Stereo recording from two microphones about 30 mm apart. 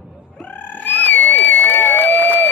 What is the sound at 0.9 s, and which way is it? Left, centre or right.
Crowd, left.